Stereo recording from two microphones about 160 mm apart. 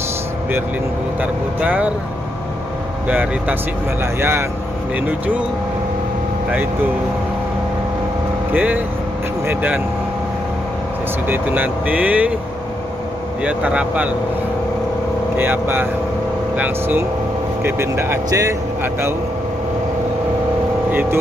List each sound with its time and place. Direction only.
1.2 s speech: 10° right (ahead or behind)
3.1 s speech: 10° right (ahead or behind)
8.5 s speech: 10° right (ahead or behind)
11.2 s speech: 10° right (ahead or behind)
13.4 s speech: 5° right (ahead or behind)
15.3 s speech: 10° right (ahead or behind)
20.9 s speech: 10° right (ahead or behind)